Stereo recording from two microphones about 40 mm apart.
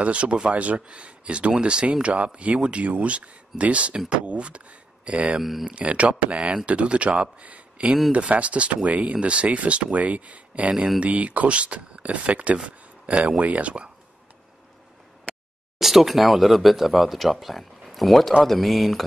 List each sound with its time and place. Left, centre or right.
0.0 s speech: right
5.4 s speech: centre
5.7 s speech: right
12.6 s a sound: right
13.4 s speech: right
15.8 s speech: centre